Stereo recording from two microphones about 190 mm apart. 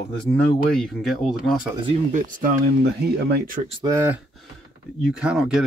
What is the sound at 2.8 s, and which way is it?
Speech, 60° right (ahead or behind).